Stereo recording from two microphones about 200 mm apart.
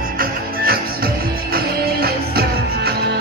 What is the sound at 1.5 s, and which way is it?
Music, 50° right (ahead or behind).